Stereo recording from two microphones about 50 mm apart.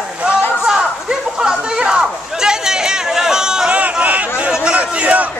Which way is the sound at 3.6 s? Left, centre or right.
Right.